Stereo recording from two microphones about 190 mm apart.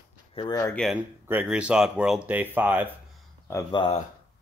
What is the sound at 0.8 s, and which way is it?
Speech, 5° left (ahead or behind).